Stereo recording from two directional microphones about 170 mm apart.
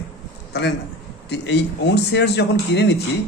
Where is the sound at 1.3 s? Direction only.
90° left.